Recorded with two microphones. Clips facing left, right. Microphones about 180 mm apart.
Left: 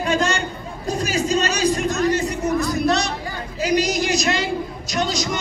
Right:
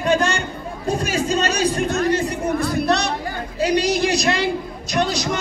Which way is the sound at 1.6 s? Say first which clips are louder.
Even; 30° right (ahead or behind).